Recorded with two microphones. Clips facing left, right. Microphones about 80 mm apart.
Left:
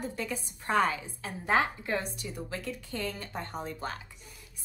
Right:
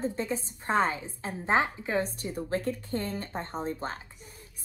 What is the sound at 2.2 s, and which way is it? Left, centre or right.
Speech, right.